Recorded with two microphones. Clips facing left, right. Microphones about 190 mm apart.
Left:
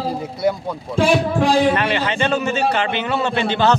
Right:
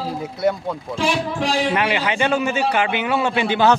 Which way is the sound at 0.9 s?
55° left (ahead or behind).